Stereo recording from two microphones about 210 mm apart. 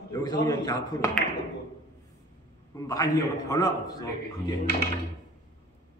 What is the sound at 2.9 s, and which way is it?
A man's voice, 15° left (ahead or behind).